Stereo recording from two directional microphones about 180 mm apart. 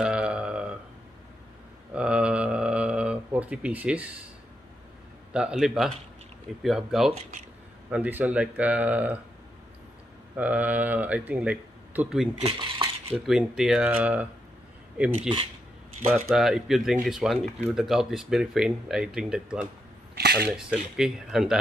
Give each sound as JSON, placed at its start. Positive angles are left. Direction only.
{"t": 0.0, "sound": "burping", "side_deg": -5}
{"t": 2.0, "sound": "a sound", "side_deg": -5}
{"t": 5.3, "sound": "speech", "side_deg": -5}
{"t": 10.3, "sound": "speech", "side_deg": -10}
{"t": 12.4, "sound": "cutlery", "side_deg": -30}
{"t": 13.2, "sound": "speech", "side_deg": -5}
{"t": 16.3, "sound": "speech", "side_deg": 0}
{"t": 20.2, "sound": "camera", "side_deg": -60}
{"t": 20.4, "sound": "speech", "side_deg": -5}